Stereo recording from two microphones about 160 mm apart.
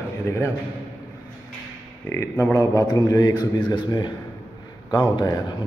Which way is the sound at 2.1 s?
15° left (ahead or behind).